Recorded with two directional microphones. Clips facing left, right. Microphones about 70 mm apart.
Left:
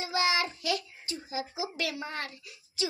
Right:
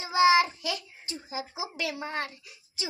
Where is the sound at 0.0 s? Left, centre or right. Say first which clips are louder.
Right 7 dB; right.